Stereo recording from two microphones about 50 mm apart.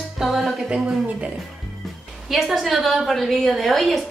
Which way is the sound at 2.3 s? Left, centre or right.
Centre.